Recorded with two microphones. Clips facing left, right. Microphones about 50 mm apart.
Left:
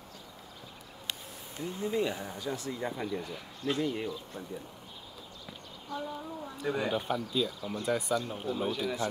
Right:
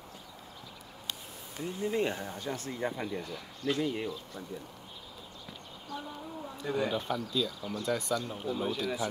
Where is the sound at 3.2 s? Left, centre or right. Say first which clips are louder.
Right 1 dB; centre.